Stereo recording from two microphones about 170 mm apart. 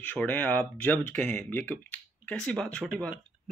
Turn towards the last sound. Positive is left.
turn(degrees=5)  # may be behind; listen again after turning